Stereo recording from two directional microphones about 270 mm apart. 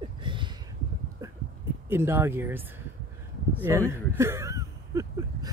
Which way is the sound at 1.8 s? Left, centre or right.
Centre.